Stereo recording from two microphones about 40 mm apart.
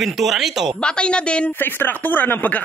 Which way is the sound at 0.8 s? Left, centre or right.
Left.